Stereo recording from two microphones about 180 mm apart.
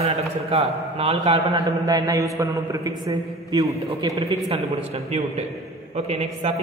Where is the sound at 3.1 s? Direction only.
20° right (ahead or behind).